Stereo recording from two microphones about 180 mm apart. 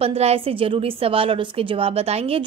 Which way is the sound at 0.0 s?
35° right (ahead or behind).